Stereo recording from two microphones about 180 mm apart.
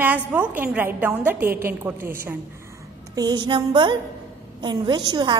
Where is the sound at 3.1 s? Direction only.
25° right (ahead or behind).